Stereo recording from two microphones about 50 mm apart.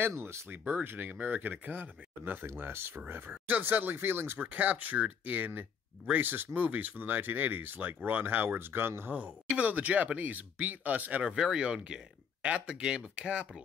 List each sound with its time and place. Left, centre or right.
0.0 s speech: right
0.5 s speech: right
4.4 s speech: right
9.6 s speech: right
11.2 s speech: centre